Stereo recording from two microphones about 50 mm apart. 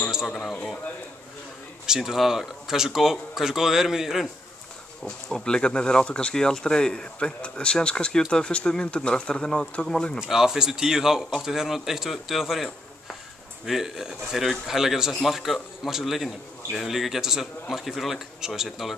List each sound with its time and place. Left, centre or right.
0.3 s speech: centre
1.9 s speech: centre
5.0 s speech: centre
10.1 s a man's voice: centre
13.7 s a man's voice: centre